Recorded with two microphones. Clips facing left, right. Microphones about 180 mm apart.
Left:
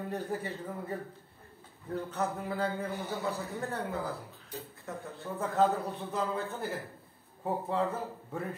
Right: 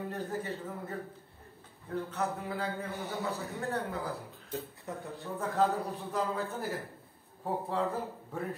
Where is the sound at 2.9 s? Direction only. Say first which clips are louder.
Left 1 dB; centre (ahead or behind).